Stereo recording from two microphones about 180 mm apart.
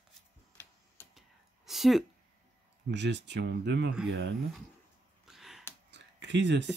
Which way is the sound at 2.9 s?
75° right (ahead or behind).